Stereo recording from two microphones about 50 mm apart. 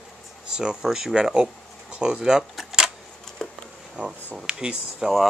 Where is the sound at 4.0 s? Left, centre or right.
Right.